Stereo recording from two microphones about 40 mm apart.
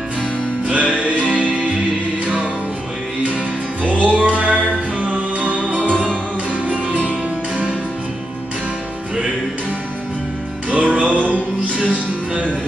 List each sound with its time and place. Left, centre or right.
0.7 s music: right
4.0 s music: right
5.7 s music: left
6.5 s music: right
10.7 s music: right